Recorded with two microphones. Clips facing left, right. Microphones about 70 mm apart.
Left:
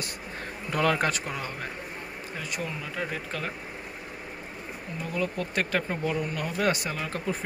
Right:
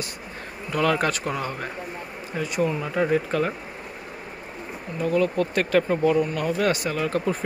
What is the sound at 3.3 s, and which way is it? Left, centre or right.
Speech, centre.